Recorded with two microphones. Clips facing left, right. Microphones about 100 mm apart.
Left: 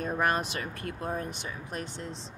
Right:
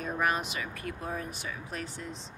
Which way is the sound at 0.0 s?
45° left (ahead or behind).